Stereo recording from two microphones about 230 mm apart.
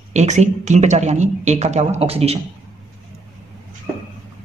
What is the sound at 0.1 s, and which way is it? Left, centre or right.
Speech, right.